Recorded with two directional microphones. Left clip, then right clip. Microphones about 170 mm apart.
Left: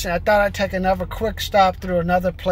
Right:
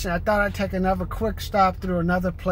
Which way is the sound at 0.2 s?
Centre (ahead or behind).